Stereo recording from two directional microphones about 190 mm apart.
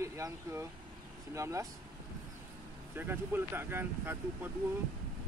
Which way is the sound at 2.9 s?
10° right (ahead or behind).